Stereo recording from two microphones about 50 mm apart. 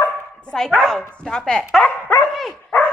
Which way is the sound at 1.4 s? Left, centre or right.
Centre.